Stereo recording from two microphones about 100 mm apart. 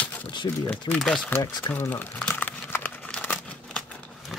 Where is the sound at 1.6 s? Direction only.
20° left (ahead or behind).